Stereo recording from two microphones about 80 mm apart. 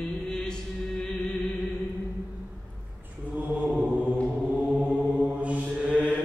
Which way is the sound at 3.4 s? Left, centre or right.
Centre.